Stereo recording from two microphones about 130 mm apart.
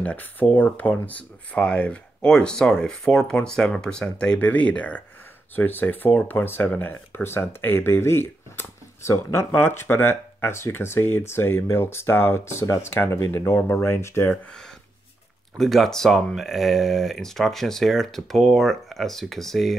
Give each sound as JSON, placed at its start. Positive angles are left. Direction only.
{"t": 0.0, "sound": "speech", "side_deg": 10}
{"t": 15.5, "sound": "speech", "side_deg": 0}